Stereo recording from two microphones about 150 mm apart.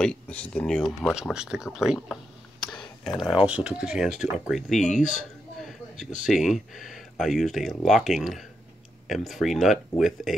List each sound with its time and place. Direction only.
0.0 s speech: 5° left (ahead or behind)
1.0 s speech: 5° right (ahead or behind)
3.0 s speech: 5° right (ahead or behind)
5.6 s a sound: centre (ahead or behind)
6.2 s speech: centre (ahead or behind)